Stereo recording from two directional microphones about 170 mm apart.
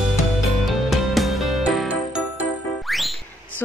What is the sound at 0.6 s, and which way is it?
Music, centre (ahead or behind).